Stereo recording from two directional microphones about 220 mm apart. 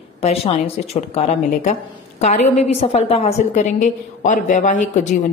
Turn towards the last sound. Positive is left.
turn(degrees=35)  # may be behind; listen again after turning